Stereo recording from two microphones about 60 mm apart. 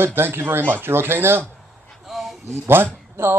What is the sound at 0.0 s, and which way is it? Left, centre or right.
Speech, right.